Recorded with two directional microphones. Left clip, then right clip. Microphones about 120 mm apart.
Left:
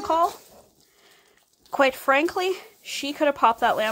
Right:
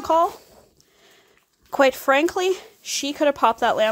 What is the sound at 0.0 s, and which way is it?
Speech, 25° right (ahead or behind).